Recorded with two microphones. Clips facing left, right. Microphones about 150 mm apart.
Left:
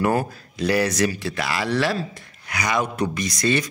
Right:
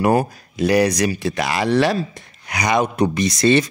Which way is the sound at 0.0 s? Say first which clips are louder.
Right 4 dB; 15° right (ahead or behind).